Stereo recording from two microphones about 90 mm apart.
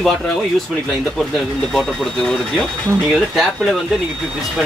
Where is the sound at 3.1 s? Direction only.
Centre (ahead or behind).